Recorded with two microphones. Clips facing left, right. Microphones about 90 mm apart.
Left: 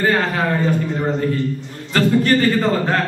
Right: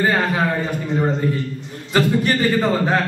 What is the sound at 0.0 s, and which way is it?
A man's voice, 15° right (ahead or behind).